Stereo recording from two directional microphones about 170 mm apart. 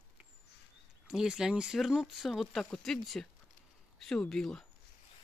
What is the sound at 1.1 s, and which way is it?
Speech, 5° right (ahead or behind).